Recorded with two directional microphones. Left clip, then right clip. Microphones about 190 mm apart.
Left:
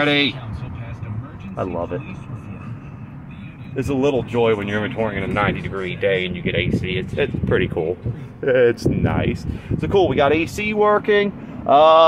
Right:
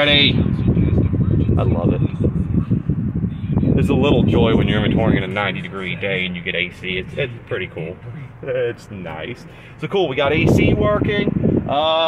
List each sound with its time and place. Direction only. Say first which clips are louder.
0.0 s speech: right 4 dB; centre (ahead or behind)
3.7 s speech: right 1 dB; 10° right (ahead or behind)
4.3 s speech: right 1 dB; centre (ahead or behind)
4.6 s speech: right 4 dB; 10° right (ahead or behind); by 7.2 s 10° left (ahead or behind)
7.4 s speech: left 6 dB; 30° left (ahead or behind)
9.8 s speech: left 2 dB; 5° left (ahead or behind); by 12.1 s 25° left (ahead or behind)